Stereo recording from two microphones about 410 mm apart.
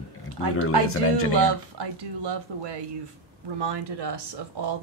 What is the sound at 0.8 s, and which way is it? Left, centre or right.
Speech, left.